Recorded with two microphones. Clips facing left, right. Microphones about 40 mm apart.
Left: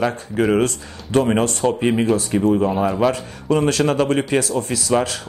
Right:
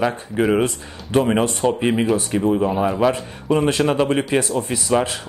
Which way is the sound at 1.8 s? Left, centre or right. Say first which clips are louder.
Left 1 dB; centre.